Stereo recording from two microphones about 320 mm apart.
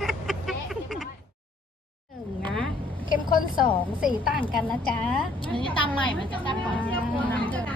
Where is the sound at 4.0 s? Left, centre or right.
Centre.